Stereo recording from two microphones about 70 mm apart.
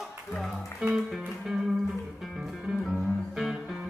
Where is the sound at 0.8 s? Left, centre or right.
Centre.